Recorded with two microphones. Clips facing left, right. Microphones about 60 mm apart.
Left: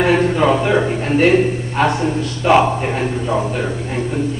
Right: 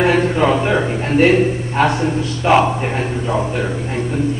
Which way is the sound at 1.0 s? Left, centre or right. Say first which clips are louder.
Right 2 dB; centre.